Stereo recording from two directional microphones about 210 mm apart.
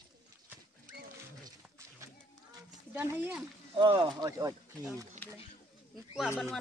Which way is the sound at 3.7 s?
25° right (ahead or behind).